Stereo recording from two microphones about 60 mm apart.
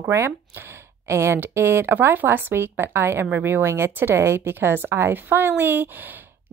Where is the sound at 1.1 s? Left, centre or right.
Right.